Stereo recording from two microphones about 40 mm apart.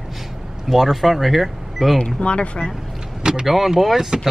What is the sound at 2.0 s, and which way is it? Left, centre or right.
Speech, left.